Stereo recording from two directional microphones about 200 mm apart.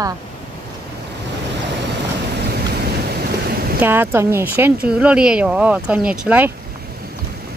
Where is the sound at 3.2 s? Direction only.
50° right (ahead or behind).